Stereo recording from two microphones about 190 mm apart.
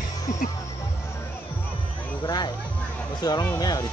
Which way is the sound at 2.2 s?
20° left (ahead or behind).